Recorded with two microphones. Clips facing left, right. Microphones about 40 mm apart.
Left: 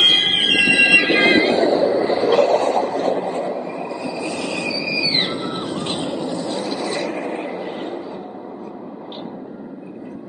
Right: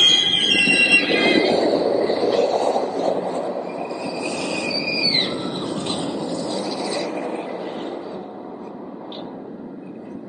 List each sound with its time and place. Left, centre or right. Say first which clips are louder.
0.0 s train: left 1 dB; centre
0.8 s train: left 3 dB; left
2.3 s train: left 3 dB; left
4.1 s train: even; centre
6.0 s a sound: left 1 dB; left
6.4 s train: left 1 dB; left